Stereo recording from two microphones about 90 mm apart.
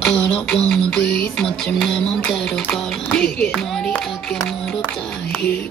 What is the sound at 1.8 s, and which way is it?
Speech, 10° left (ahead or behind).